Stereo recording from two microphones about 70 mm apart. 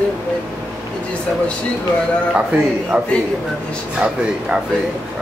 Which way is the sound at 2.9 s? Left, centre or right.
Right.